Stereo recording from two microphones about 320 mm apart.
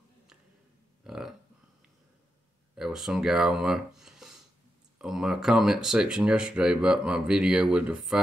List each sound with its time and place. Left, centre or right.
1.0 s burping: centre
2.7 s speech: centre